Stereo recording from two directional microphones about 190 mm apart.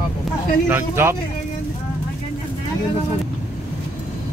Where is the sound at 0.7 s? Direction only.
10° right (ahead or behind).